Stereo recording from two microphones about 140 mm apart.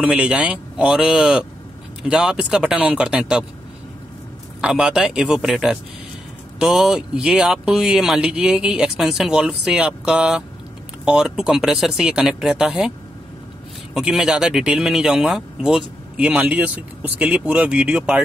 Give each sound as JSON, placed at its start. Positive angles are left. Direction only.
{"t": 0.0, "sound": "speech", "side_deg": -5}
{"t": 4.6, "sound": "speech", "side_deg": -5}
{"t": 13.9, "sound": "speech", "side_deg": -5}